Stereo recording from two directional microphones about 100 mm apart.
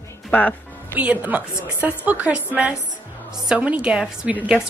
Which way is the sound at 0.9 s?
15° right (ahead or behind).